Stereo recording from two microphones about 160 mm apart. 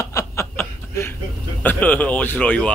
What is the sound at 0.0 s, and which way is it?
Snicker, 20° left (ahead or behind).